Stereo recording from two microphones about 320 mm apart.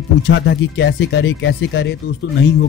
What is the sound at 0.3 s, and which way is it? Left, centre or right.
A man's voice, left.